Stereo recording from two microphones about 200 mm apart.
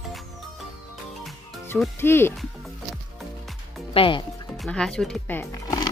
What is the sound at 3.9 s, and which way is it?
Speech, 25° left (ahead or behind).